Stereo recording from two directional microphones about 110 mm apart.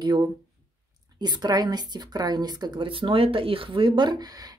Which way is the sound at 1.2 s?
40° right (ahead or behind).